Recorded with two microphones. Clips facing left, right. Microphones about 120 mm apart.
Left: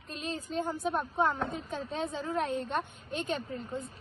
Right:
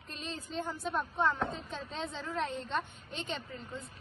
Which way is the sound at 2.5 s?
55° left (ahead or behind).